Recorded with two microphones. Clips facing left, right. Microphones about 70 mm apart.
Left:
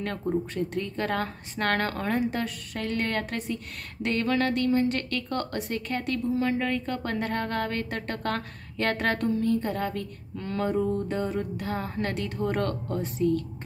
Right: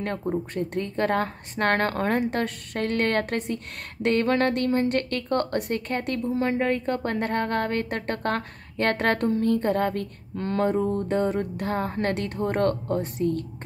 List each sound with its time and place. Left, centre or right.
0.2 s a woman's voice: right